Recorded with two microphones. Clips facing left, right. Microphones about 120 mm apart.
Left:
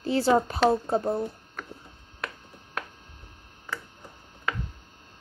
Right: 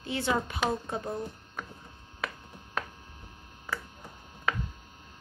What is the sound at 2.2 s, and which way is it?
Telephone, centre (ahead or behind).